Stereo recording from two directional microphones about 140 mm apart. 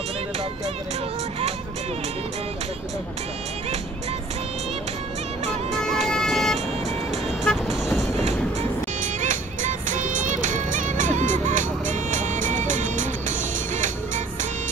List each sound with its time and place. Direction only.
5.7 s music: 5° left (ahead or behind)
7.4 s vehicle: centre (ahead or behind)
9.2 s music: 65° right (ahead or behind)